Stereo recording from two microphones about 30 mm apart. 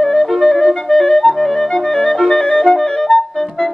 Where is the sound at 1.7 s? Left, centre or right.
Left.